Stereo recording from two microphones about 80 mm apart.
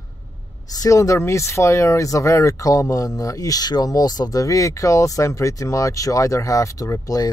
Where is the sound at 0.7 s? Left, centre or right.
Left.